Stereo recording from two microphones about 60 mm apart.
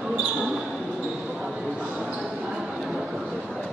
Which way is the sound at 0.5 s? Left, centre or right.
Centre.